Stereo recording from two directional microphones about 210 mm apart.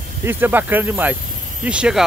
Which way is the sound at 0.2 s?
10° right (ahead or behind).